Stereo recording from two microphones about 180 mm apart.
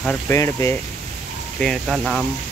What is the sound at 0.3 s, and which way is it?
Speech, 15° left (ahead or behind).